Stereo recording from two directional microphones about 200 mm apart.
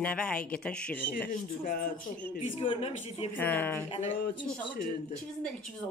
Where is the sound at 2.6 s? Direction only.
30° left (ahead or behind).